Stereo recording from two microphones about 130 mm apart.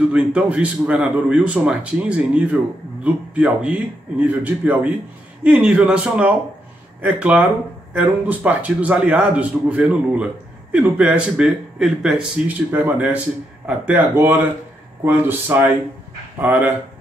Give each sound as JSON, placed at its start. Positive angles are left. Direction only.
{"t": 0.1, "sound": "speech", "side_deg": -10}